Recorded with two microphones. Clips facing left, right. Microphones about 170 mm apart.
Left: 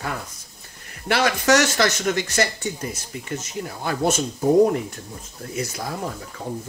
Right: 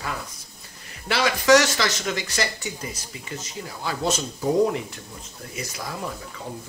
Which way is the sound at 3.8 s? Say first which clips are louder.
Left 3 dB; 55° left (ahead or behind).